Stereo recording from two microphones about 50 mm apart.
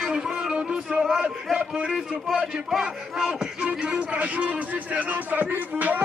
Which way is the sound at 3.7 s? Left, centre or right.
Right.